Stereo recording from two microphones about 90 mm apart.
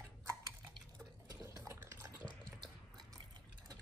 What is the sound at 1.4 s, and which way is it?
Liquid, 30° right (ahead or behind).